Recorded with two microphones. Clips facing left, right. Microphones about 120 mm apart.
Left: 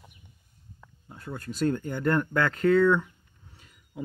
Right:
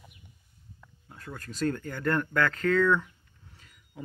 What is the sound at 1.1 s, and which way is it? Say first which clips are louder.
Speech: left 5 dB; 20° left (ahead or behind).